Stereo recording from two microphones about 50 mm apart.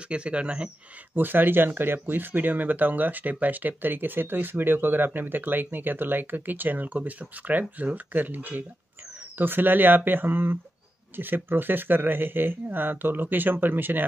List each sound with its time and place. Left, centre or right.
0.1 s speech: right
1.1 s speech: right